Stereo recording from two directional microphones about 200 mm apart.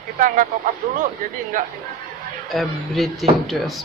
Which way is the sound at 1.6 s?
45° right (ahead or behind).